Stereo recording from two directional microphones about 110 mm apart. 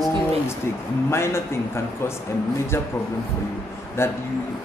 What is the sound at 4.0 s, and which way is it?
Speech, 25° left (ahead or behind).